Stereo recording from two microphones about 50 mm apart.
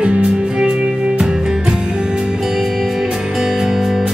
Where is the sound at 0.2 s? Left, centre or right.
Centre.